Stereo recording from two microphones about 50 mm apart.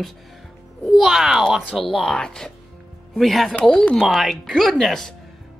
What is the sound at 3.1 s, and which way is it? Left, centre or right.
Speech, centre.